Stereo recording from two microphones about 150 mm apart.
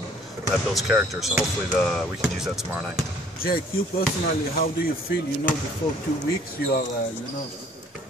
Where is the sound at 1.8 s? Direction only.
5° left (ahead or behind).